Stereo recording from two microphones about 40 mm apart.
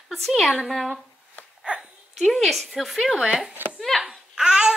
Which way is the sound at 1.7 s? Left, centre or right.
Right.